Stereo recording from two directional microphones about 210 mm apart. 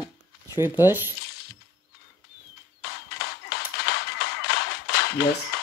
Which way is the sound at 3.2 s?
50° left (ahead or behind).